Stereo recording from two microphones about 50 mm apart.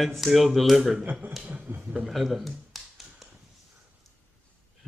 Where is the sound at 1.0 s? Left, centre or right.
Right.